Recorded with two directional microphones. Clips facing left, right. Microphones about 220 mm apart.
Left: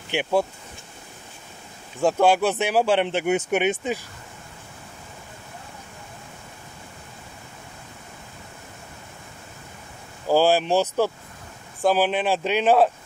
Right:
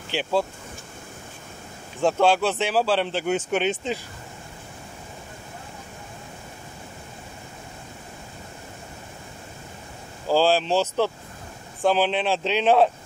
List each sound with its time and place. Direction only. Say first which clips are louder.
0.1 s speech: left 2 dB; 15° left (ahead or behind)
2.0 s speech: left 1 dB; 10° left (ahead or behind)
10.2 s speech: left 1 dB; 15° left (ahead or behind)